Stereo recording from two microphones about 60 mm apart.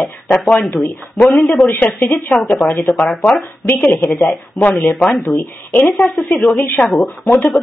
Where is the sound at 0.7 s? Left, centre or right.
Left.